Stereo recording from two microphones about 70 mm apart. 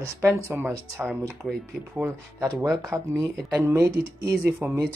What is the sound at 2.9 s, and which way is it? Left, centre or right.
Speech, right.